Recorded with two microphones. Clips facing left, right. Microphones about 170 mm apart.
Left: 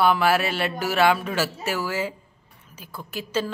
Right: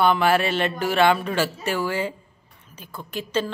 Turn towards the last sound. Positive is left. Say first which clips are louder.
# right 1 dB
turn(degrees=5)  # may be behind; listen again after turning